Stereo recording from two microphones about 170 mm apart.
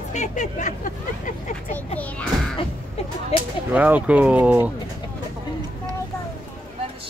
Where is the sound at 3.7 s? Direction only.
10° right (ahead or behind).